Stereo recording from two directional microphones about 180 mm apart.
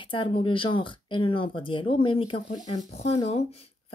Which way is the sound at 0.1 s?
30° left (ahead or behind).